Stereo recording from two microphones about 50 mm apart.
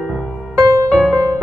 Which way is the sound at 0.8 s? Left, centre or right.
Left.